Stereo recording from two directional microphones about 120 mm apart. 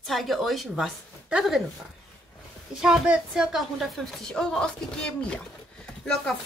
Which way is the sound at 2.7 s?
5° right (ahead or behind).